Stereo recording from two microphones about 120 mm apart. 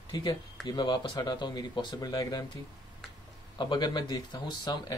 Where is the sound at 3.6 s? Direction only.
35° left (ahead or behind).